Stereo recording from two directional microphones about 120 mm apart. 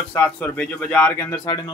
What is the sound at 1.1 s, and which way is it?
Speech, 30° left (ahead or behind).